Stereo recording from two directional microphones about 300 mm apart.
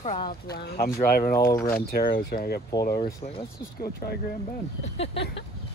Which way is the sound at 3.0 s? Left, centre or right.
Centre.